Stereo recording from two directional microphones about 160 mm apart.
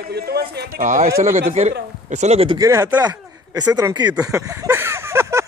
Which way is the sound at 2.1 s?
45° right (ahead or behind).